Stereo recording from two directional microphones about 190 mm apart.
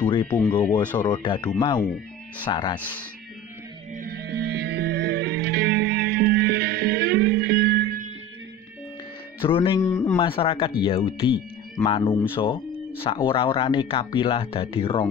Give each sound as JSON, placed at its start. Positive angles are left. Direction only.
{"t": 0.0, "sound": "a sound", "side_deg": 25}
{"t": 0.3, "sound": "speech", "side_deg": 5}
{"t": 0.7, "sound": "speech", "side_deg": 25}
{"t": 3.9, "sound": "music", "side_deg": -50}
{"t": 9.4, "sound": "speech", "side_deg": 25}
{"t": 10.1, "sound": "speech", "side_deg": 25}